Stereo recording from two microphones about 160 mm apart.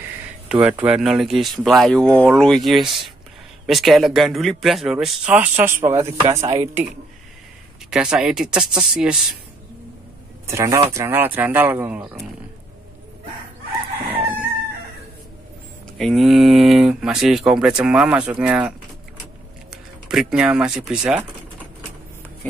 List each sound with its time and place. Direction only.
0.5 s speech: 5° right (ahead or behind)
7.9 s speech: 5° right (ahead or behind)
10.4 s speech: 20° right (ahead or behind)
16.0 s speech: centre (ahead or behind)
20.1 s speech: 5° right (ahead or behind)